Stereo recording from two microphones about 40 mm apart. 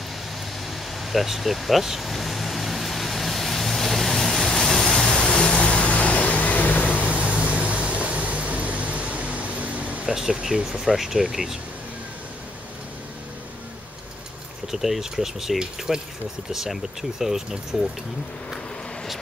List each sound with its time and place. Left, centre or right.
0.7 s vehicle: centre
5.6 s vehicle: left
7.1 s a sound: right
10.0 s speech: centre
14.7 s speech: centre
17.2 s speech: centre